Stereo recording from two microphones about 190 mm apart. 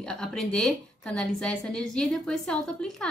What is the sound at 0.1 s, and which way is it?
A woman's voice, 5° left (ahead or behind).